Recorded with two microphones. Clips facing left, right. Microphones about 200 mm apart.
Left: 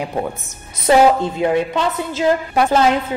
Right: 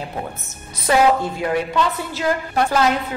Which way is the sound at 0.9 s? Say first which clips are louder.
Left 4 dB; 25° left (ahead or behind).